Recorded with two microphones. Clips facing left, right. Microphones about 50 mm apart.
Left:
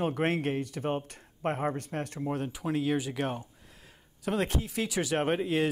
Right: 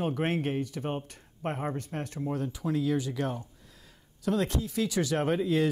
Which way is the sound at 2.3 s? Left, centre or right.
Left.